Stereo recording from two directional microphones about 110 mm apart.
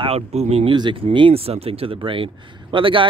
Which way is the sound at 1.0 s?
55° right (ahead or behind).